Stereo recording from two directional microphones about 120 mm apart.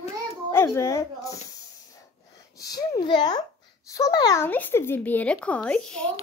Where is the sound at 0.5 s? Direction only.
25° left (ahead or behind); by 3.4 s 40° left (ahead or behind).